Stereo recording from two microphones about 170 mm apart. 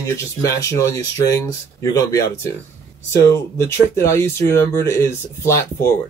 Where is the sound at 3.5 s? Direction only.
15° left (ahead or behind).